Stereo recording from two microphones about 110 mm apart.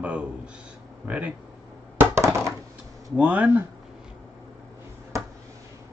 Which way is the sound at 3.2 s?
15° right (ahead or behind).